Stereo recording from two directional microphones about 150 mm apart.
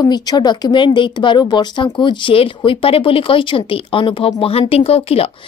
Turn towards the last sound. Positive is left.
turn(degrees=40)  # may be behind; listen again after turning